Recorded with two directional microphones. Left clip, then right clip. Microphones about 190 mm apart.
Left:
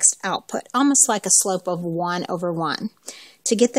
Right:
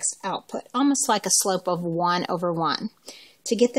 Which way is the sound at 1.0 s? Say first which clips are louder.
Left 2 dB; 35° left (ahead or behind).